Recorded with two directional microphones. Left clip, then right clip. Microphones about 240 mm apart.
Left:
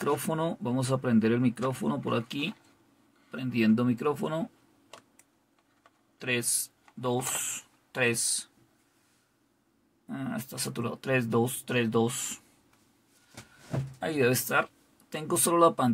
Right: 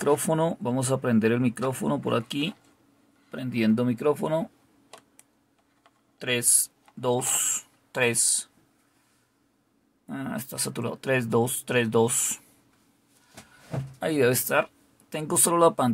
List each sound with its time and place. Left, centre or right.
0.0 s speech: right
6.1 s speech: centre
10.0 s speech: right
13.9 s speech: right